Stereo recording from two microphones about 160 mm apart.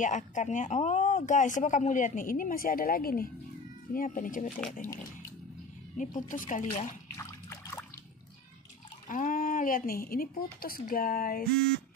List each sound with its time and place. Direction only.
0.0 s speech: 50° left (ahead or behind)
5.9 s speech: 55° left (ahead or behind)
7.2 s trickle: 20° left (ahead or behind)
9.1 s speech: 55° left (ahead or behind)
11.5 s speech: 70° right (ahead or behind)